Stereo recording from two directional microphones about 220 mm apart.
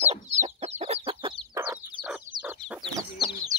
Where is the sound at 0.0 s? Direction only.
30° right (ahead or behind).